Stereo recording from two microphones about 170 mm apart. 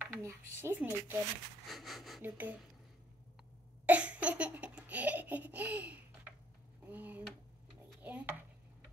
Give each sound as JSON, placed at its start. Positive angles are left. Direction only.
{"t": 0.0, "sound": "a sound", "side_deg": -15}
{"t": 0.6, "sound": "speech", "side_deg": -10}
{"t": 1.7, "sound": "speech", "side_deg": 0}
{"t": 2.2, "sound": "speech", "side_deg": -10}
{"t": 3.8, "sound": "laughter", "side_deg": -10}
{"t": 6.9, "sound": "a sound", "side_deg": -10}